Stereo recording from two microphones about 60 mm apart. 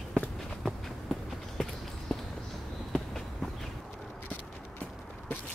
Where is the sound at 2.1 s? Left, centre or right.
Centre.